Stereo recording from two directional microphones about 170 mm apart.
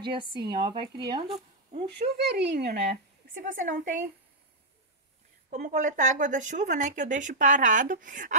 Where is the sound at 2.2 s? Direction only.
85° right.